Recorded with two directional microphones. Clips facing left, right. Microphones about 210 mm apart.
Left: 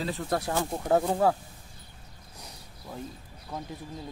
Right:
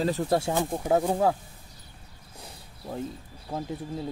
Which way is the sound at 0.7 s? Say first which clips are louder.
Left 1 dB; 10° right (ahead or behind).